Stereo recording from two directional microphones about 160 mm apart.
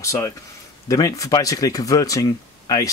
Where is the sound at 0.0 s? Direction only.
20° left (ahead or behind).